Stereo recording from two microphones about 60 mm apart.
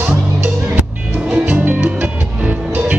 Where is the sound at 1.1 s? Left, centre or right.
Centre.